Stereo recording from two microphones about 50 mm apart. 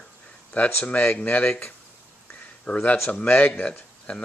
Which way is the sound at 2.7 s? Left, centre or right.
Left.